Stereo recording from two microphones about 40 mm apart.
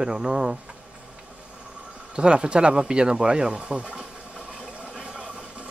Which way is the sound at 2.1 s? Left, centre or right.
Right.